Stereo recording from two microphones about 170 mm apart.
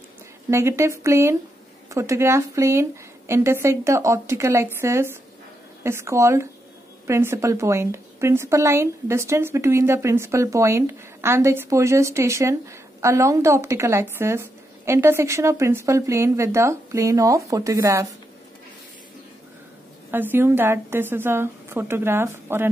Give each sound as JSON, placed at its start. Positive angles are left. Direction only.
{"t": 0.5, "sound": "a woman's voice", "side_deg": -15}
{"t": 20.1, "sound": "a woman's voice", "side_deg": -10}